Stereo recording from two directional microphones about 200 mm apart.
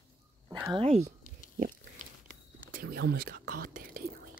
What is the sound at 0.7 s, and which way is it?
Speech, 30° right (ahead or behind).